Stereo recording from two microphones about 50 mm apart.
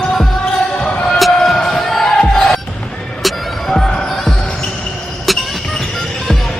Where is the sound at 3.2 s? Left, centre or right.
Centre.